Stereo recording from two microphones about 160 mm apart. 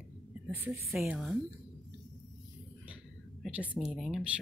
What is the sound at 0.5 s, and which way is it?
Speech, 10° right (ahead or behind).